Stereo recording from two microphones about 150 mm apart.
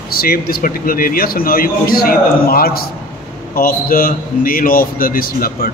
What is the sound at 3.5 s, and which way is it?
A man's voice, 75° left (ahead or behind).